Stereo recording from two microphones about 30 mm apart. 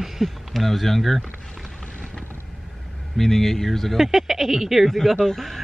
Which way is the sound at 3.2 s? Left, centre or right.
Centre.